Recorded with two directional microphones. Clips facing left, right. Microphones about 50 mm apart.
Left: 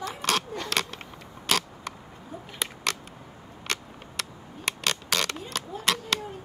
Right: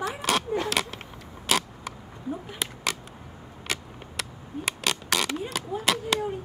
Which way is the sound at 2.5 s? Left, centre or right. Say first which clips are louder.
Even; centre.